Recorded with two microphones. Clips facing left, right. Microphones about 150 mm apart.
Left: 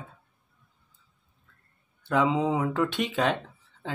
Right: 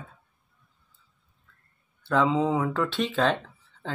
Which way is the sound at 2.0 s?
15° left (ahead or behind).